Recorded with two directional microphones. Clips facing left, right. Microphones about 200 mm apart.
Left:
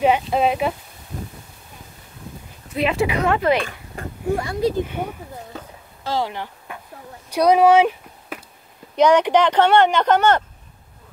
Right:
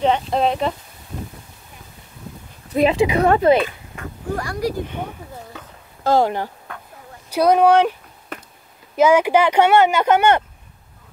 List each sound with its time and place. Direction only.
0.0 s speech: 5° left (ahead or behind)
2.7 s speech: 40° right (ahead or behind)
3.9 s a sound: 35° left (ahead or behind)
4.3 s speech: 25° left (ahead or behind)
6.0 s speech: 50° right (ahead or behind)
7.2 s a sound: centre (ahead or behind)
8.9 s speech: 5° right (ahead or behind)